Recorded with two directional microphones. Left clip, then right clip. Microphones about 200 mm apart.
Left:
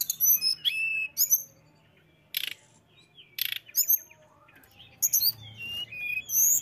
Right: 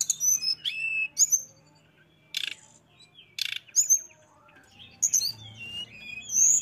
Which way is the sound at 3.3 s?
10° left (ahead or behind).